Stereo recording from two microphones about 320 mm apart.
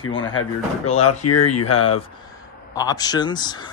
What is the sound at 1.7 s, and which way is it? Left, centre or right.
Speech, centre.